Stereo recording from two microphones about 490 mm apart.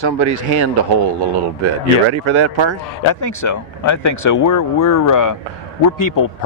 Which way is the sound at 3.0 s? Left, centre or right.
Left.